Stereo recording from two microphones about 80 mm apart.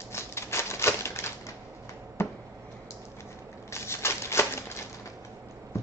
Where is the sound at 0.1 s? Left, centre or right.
Left.